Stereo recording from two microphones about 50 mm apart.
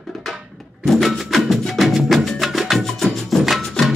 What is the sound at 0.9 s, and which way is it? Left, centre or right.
Music, centre.